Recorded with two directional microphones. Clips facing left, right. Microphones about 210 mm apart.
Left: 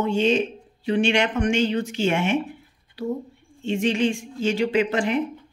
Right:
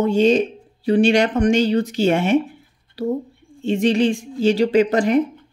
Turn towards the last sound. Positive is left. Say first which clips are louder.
# right 6 dB
turn(degrees=-40)  # may be behind; listen again after turning